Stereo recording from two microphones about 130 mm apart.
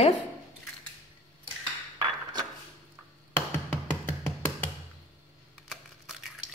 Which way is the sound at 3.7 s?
15° left (ahead or behind).